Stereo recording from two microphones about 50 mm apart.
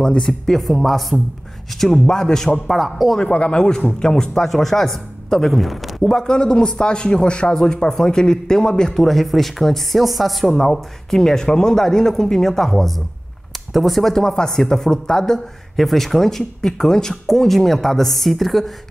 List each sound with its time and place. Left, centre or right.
0.0 s a man's voice: centre
0.6 s a man's voice: centre
2.7 s a man's voice: centre
3.2 s a man's voice: centre
6.1 s a man's voice: centre